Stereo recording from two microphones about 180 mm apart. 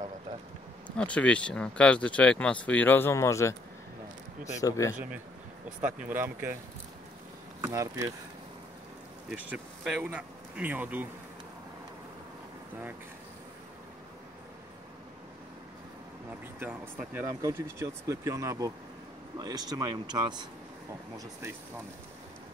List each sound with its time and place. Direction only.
0.9 s speech: 5° left (ahead or behind)
4.6 s speech: 20° left (ahead or behind)
5.8 s speech: 5° right (ahead or behind)
7.6 s speech: 15° right (ahead or behind)
9.3 s speech: 5° right (ahead or behind)
16.3 s speech: 10° right (ahead or behind)